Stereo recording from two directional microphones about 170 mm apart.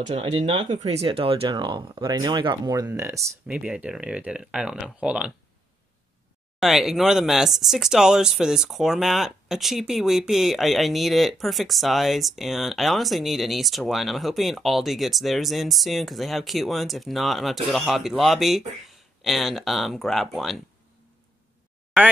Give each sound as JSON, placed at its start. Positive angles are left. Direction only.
{"t": 0.0, "sound": "speech", "side_deg": -35}
{"t": 0.7, "sound": "speech", "side_deg": -40}
{"t": 6.6, "sound": "speech", "side_deg": 0}